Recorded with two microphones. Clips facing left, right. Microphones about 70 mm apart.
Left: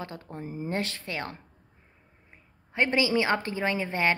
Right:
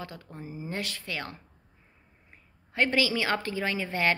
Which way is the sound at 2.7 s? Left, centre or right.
Left.